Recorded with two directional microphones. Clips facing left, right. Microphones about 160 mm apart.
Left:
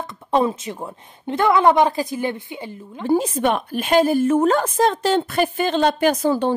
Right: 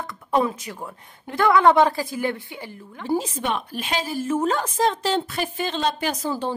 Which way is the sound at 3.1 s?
55° left (ahead or behind).